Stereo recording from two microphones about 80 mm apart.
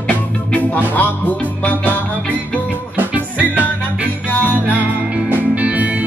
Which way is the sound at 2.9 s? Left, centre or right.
Right.